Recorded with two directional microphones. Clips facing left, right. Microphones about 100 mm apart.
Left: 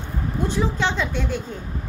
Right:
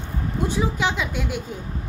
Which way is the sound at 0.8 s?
5° right (ahead or behind).